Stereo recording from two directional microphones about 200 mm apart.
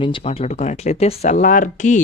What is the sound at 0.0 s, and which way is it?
A woman's voice, 25° left (ahead or behind).